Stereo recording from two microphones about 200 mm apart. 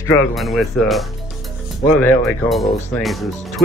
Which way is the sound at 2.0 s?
Centre (ahead or behind).